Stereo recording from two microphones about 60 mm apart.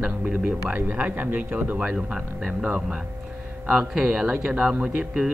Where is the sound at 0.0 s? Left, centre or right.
Right.